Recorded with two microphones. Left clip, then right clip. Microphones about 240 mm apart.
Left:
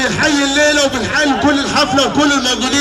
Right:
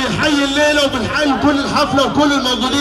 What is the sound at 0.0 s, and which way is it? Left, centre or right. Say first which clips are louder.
A man's voice: left 2 dB; left.